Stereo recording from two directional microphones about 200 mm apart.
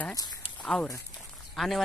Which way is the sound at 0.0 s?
20° left (ahead or behind).